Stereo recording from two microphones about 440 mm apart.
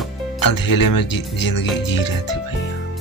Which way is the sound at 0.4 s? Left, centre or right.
Left.